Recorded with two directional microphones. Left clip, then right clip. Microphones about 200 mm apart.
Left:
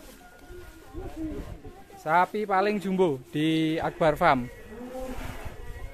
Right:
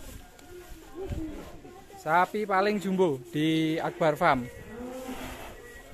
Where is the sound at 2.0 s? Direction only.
10° left (ahead or behind).